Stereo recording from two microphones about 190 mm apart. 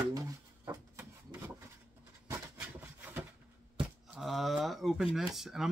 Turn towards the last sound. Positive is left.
turn(degrees=0)  # may be behind; listen again after turning